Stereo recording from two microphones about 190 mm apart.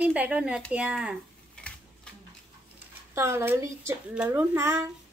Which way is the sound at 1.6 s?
5° left (ahead or behind).